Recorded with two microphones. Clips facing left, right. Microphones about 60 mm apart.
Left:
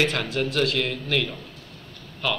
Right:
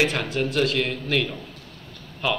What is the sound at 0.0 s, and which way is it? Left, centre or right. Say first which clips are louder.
A man's voice: right 1 dB; centre.